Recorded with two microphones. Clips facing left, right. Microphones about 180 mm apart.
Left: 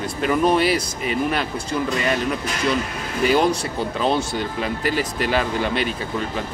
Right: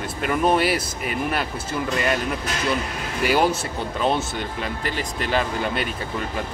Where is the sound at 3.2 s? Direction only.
5° right (ahead or behind).